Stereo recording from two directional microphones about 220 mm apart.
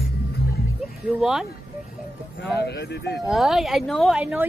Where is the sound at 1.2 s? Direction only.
Centre (ahead or behind).